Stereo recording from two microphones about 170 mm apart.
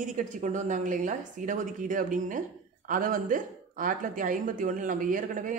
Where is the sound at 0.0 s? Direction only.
45° right (ahead or behind).